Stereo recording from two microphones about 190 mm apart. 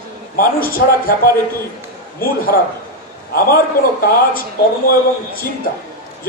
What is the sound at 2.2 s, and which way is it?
A man's voice, 50° left (ahead or behind).